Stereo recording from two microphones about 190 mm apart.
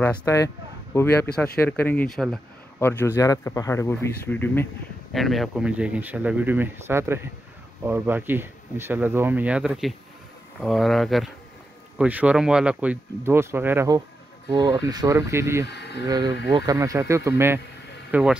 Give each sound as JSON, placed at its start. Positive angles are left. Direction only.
{"t": 0.2, "sound": "speech", "side_deg": 15}
{"t": 5.1, "sound": "speech", "side_deg": 0}
{"t": 15.7, "sound": "speech", "side_deg": 60}
{"t": 16.1, "sound": "speech", "side_deg": -20}